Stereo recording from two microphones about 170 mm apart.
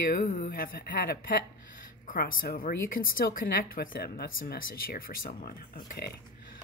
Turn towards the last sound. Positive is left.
turn(degrees=65)  # may be behind; listen again after turning